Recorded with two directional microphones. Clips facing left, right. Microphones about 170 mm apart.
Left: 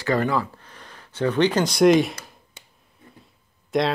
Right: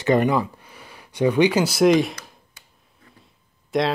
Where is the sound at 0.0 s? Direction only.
20° right (ahead or behind); by 2.1 s centre (ahead or behind).